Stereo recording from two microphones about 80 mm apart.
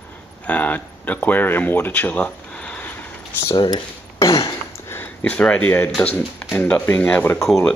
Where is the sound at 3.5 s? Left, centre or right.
Left.